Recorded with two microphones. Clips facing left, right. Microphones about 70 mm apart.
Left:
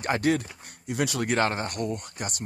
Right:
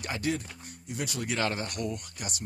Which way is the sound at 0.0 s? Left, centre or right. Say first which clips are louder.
Left 7 dB; left.